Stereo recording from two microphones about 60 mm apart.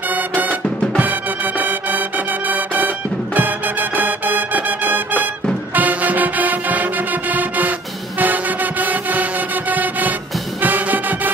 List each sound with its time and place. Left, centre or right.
0.1 s music: right